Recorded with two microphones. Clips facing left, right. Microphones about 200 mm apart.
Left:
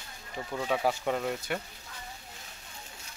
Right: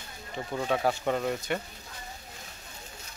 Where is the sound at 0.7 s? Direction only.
5° left (ahead or behind).